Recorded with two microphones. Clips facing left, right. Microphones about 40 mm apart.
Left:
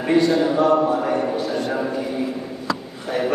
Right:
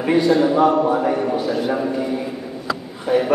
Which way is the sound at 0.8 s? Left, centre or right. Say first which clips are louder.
Right 2 dB; centre.